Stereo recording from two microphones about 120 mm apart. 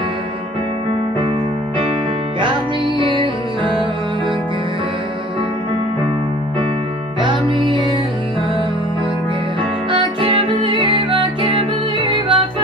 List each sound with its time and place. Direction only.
7.2 s music: 40° right (ahead or behind)
9.8 s music: 45° right (ahead or behind)